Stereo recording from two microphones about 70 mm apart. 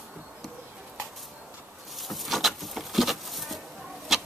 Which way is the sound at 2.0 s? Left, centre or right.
Centre.